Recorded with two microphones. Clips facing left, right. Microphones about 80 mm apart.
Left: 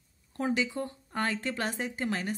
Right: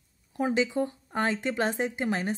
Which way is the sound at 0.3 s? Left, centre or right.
Centre.